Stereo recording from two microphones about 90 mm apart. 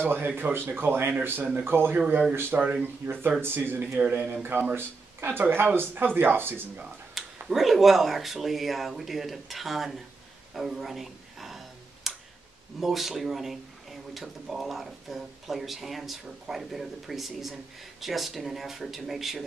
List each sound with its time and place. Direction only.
0.0 s speech: 25° right (ahead or behind)
7.2 s speech: centre (ahead or behind)
10.5 s a sound: centre (ahead or behind)
12.8 s speech: centre (ahead or behind)